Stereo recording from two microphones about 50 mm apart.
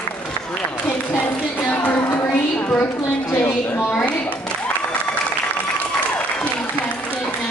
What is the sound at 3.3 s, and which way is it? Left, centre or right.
Speech, left.